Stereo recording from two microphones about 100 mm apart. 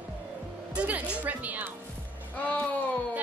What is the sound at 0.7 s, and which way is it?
Speech, 15° right (ahead or behind).